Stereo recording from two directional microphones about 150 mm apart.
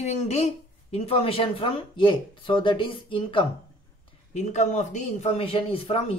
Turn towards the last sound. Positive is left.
turn(degrees=40)  # may be behind; listen again after turning